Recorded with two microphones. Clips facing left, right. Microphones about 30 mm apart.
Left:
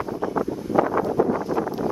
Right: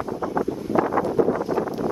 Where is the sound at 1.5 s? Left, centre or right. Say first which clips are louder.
Even; centre.